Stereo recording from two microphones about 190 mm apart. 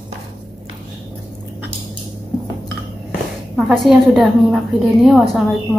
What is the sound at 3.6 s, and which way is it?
A woman's voice, centre (ahead or behind).